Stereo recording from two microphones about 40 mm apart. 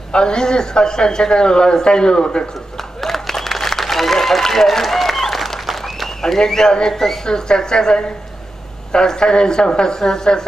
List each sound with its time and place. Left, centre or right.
0.1 s speech: left
2.8 s applause: centre
8.9 s speech: centre